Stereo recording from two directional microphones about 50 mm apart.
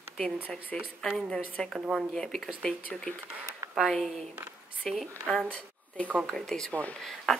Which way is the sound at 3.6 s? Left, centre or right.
Right.